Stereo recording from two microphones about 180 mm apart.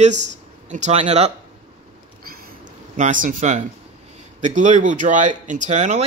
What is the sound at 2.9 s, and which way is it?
Speech, 45° right (ahead or behind).